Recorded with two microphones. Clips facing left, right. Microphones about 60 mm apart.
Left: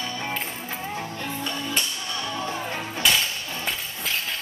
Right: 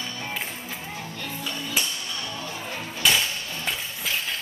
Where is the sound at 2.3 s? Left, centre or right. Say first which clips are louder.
Left 4 dB; left.